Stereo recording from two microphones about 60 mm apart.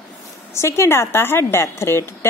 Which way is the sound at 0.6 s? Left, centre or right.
Left.